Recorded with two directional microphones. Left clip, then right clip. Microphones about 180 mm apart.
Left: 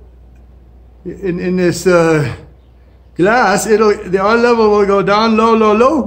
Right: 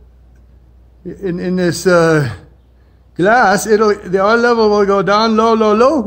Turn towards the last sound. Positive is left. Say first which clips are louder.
# left 1 dB
turn(degrees=-45)  # may be behind; listen again after turning